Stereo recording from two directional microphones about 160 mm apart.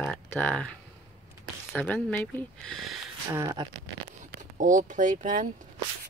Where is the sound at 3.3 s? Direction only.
20° right (ahead or behind).